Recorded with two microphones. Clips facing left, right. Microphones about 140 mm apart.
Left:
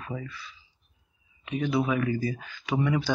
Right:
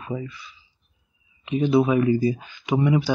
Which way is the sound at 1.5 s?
25° right (ahead or behind).